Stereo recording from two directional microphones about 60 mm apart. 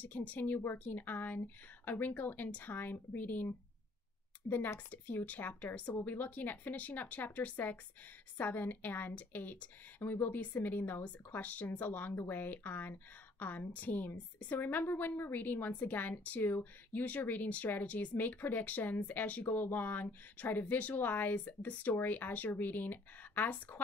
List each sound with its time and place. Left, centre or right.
0.0 s a woman's voice: left
4.7 s a woman's voice: left